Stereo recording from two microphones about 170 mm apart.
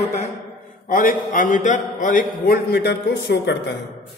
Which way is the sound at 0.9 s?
55° left (ahead or behind).